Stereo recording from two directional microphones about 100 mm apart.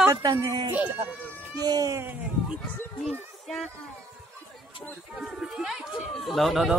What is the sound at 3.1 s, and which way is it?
Speech, 5° left (ahead or behind).